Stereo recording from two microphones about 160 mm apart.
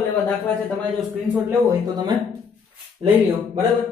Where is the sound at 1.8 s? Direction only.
25° right (ahead or behind).